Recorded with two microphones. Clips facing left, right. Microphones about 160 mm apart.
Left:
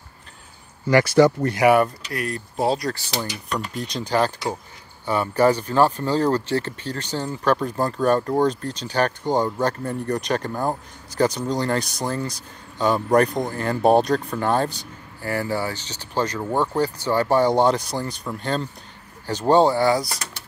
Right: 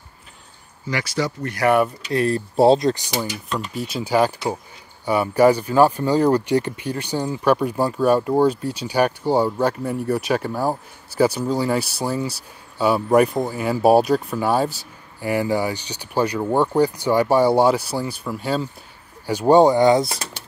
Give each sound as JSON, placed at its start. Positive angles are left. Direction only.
{"t": 0.8, "sound": "speech", "side_deg": 55}
{"t": 1.6, "sound": "speech", "side_deg": 15}
{"t": 2.0, "sound": "speech", "side_deg": -30}
{"t": 3.3, "sound": "speech", "side_deg": -5}